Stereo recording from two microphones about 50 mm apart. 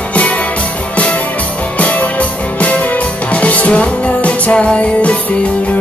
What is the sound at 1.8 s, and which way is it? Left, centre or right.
Music, left.